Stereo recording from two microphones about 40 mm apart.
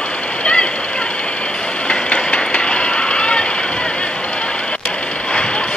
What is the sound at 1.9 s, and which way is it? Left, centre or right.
Vehicle, left.